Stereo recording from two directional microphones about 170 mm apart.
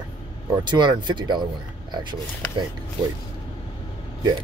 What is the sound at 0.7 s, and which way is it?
Speech, 25° right (ahead or behind).